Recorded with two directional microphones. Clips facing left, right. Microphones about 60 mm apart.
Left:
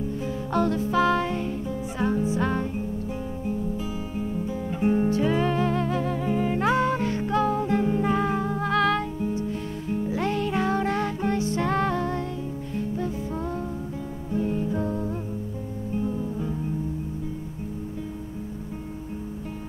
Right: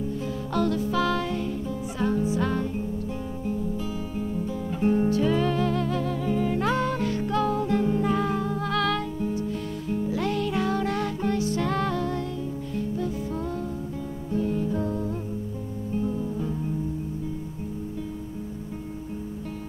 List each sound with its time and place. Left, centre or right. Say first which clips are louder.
0.2 s music: left 2 dB; left
15.9 s music: even; centre